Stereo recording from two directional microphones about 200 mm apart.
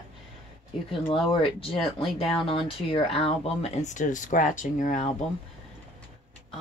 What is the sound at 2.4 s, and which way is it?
Speech, 25° left (ahead or behind).